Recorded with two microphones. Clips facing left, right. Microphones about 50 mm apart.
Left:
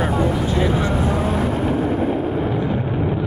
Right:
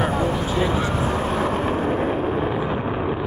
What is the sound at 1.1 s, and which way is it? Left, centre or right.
Vehicle, right.